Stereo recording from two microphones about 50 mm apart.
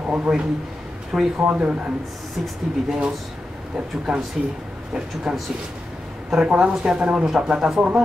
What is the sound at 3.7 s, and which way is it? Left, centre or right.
Speech, centre.